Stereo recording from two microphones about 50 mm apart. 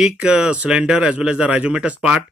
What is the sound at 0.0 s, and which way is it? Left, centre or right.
Speech, centre.